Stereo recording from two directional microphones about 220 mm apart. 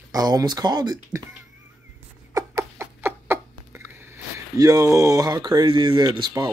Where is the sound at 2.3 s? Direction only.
10° right (ahead or behind).